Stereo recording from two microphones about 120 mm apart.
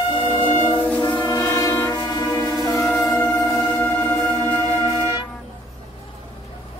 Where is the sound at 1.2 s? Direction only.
25° left (ahead or behind).